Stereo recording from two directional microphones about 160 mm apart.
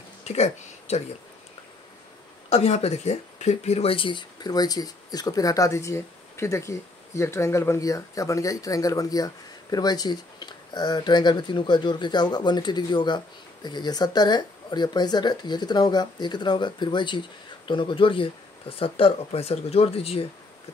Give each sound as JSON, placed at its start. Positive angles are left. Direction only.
{"t": 0.2, "sound": "speech", "side_deg": 45}
{"t": 2.5, "sound": "speech", "side_deg": 40}